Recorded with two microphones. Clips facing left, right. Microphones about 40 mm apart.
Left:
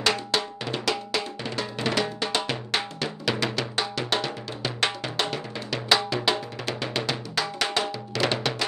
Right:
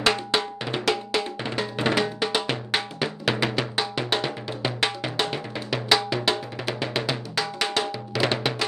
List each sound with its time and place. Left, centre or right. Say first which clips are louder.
0.0 s music: right 2 dB; centre